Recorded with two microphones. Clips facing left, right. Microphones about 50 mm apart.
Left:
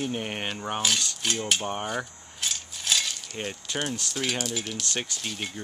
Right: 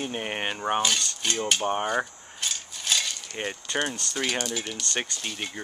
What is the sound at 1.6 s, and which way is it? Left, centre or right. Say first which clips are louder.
Speech: right 5 dB; centre.